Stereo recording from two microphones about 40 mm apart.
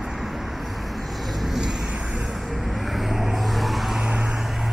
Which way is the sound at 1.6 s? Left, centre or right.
Centre.